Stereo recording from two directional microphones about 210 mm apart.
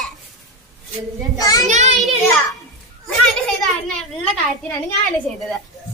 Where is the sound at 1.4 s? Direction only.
15° left (ahead or behind).